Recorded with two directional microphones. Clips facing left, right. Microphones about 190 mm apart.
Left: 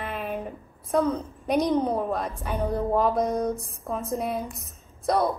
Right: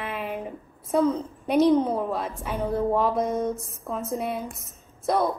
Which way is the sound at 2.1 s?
Centre (ahead or behind).